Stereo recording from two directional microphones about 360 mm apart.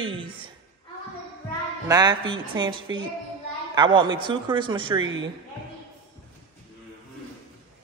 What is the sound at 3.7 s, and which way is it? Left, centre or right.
A woman's voice, centre.